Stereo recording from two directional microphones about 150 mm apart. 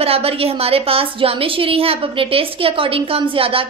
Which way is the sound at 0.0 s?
40° right (ahead or behind).